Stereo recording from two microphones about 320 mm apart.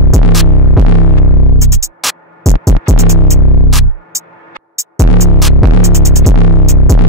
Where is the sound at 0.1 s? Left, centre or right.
Centre.